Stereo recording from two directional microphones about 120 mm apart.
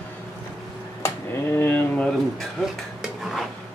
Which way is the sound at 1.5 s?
15° left (ahead or behind).